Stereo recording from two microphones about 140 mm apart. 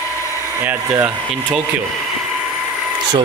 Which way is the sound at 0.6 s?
15° right (ahead or behind).